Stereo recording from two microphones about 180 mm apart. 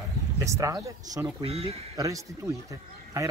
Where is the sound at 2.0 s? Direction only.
20° right (ahead or behind).